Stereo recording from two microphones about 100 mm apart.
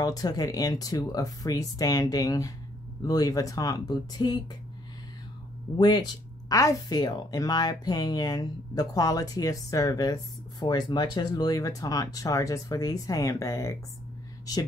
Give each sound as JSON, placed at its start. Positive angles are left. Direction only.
{"t": 0.0, "sound": "speech", "side_deg": 40}
{"t": 5.8, "sound": "speech", "side_deg": 45}